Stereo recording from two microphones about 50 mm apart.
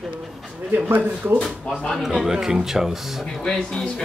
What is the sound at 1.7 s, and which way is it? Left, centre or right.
Speech, left.